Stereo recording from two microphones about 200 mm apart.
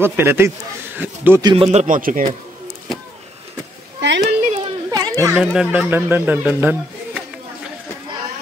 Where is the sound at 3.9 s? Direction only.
60° right (ahead or behind).